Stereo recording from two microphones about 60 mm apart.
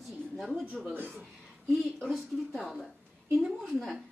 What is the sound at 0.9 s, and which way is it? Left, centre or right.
Speech, right.